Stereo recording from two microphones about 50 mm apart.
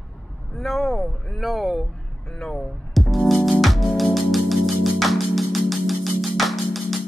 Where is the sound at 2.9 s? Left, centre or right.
Centre.